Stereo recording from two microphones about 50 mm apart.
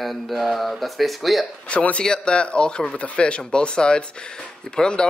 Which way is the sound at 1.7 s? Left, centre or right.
Left.